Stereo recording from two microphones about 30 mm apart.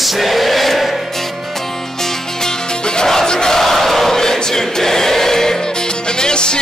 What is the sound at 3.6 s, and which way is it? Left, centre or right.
Choir, centre.